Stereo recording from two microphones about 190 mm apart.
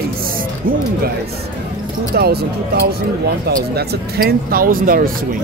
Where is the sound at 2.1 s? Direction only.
55° right (ahead or behind).